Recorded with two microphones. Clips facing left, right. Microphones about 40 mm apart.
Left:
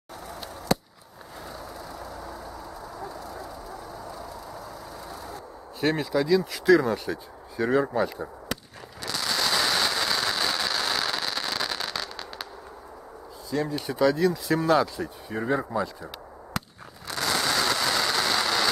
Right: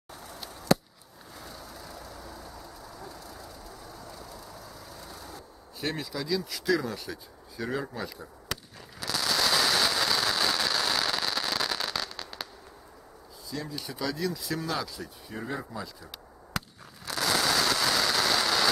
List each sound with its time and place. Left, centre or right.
0.3 s a sound: centre
1.4 s vehicle: centre
5.8 s speech: left
8.5 s a sound: centre
9.0 s fireworks: centre
13.5 s speech: left
16.5 s fireworks: centre